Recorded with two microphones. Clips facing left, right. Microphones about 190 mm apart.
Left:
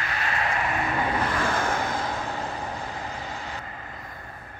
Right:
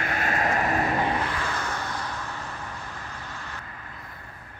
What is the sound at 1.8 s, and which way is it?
Vehicle, 90° left.